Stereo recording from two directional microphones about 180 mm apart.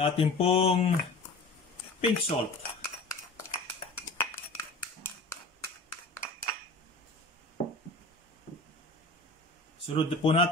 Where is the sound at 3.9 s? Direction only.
15° left (ahead or behind).